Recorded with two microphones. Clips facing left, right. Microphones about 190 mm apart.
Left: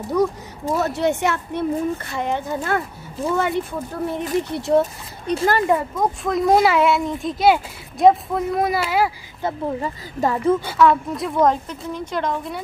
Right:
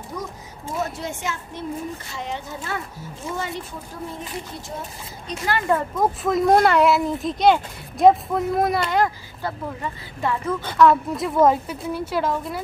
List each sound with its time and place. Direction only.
0.1 s speech: 70° left (ahead or behind)
5.3 s speech: 35° left (ahead or behind)
5.9 s speech: centre (ahead or behind)
9.4 s speech: 30° left (ahead or behind)
10.6 s speech: 5° left (ahead or behind)